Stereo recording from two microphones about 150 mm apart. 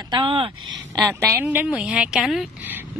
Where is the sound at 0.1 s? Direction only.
35° right (ahead or behind).